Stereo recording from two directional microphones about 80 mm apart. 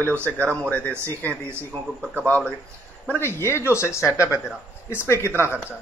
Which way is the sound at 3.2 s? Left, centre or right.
Left.